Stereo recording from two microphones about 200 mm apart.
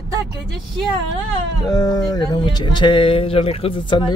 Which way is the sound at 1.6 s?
20° left (ahead or behind).